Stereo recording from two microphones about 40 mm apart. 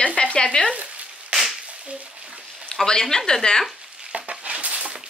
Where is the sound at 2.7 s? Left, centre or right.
Centre.